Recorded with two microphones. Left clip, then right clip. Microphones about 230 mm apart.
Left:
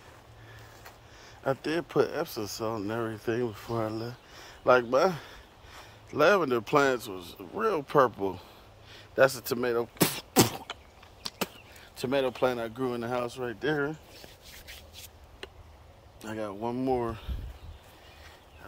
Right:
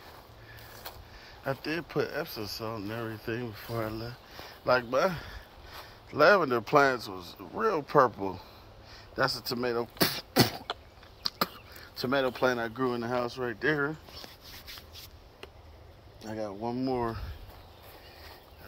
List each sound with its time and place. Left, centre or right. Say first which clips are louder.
1.2 s speech: left 4 dB; centre
8.9 s a sound: left 6 dB; centre
12.0 s speech: even; centre
16.2 s speech: left 1 dB; centre